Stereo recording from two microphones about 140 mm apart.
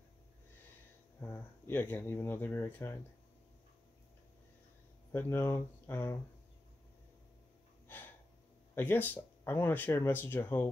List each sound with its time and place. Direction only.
1.2 s speech: 15° left (ahead or behind)
5.1 s speech: 15° left (ahead or behind)
8.7 s speech: 15° left (ahead or behind)